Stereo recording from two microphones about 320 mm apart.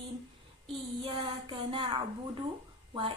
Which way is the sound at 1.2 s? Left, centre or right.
Centre.